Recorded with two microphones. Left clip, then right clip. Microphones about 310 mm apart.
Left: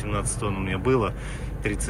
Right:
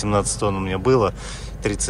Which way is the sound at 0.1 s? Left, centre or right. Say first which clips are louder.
Right 8 dB; centre.